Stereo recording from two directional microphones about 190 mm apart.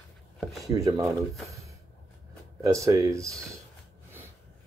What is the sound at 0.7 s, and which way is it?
Speech, 20° right (ahead or behind).